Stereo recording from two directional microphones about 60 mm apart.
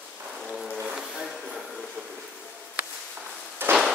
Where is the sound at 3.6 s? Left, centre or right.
Right.